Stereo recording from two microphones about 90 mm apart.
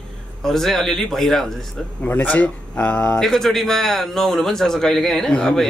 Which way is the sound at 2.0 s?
20° left (ahead or behind).